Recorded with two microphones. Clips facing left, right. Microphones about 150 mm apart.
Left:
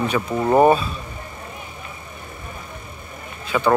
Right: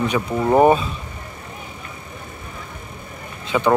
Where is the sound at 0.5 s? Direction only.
20° right (ahead or behind).